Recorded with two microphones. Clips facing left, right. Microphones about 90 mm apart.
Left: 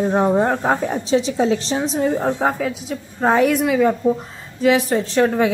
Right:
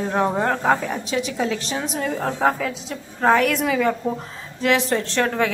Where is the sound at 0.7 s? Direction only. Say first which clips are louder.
Left 6 dB; 30° left (ahead or behind).